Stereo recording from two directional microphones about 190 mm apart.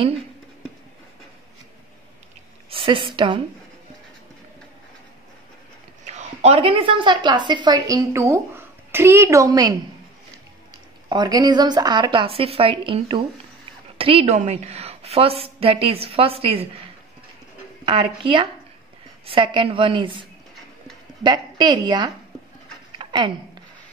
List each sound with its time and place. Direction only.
2.7 s a woman's voice: 25° right (ahead or behind)
6.0 s a woman's voice: 35° right (ahead or behind); by 9.8 s 20° right (ahead or behind)
11.1 s a woman's voice: 20° right (ahead or behind)
17.8 s a woman's voice: 25° right (ahead or behind)
22.9 s a sound: 25° right (ahead or behind)